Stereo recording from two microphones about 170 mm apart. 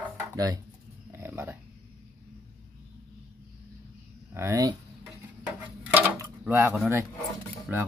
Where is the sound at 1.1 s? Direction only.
15° right (ahead or behind).